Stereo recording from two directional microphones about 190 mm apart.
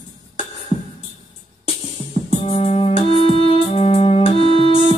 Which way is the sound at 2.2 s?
30° left (ahead or behind).